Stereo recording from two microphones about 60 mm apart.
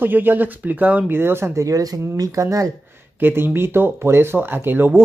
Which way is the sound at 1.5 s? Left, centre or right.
Right.